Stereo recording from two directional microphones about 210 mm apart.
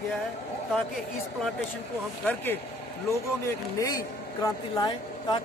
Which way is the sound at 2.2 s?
10° left (ahead or behind).